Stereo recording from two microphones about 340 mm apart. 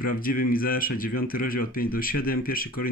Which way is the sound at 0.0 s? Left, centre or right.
Left.